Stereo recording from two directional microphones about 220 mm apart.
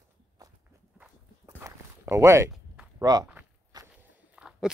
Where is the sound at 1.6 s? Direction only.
10° right (ahead or behind).